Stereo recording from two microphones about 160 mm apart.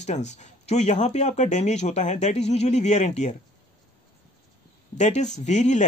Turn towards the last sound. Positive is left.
turn(degrees=50)  # may be behind; listen again after turning